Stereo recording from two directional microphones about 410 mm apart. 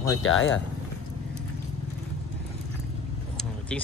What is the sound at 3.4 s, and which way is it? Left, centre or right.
Vehicle, centre.